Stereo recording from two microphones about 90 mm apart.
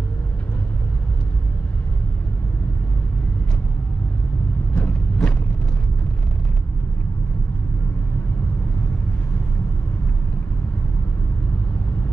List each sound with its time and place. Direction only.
4.7 s vehicle: 20° left (ahead or behind)